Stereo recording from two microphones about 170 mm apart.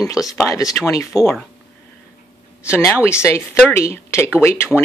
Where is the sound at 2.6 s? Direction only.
15° left (ahead or behind).